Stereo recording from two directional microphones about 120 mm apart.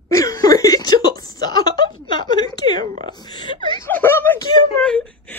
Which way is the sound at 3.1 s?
35° left (ahead or behind).